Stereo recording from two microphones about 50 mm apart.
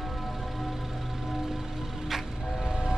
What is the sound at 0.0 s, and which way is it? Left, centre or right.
Music, centre.